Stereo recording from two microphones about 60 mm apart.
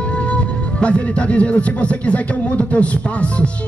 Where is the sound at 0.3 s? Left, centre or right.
Centre.